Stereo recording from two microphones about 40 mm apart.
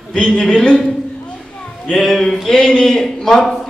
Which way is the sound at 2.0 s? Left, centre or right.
Centre.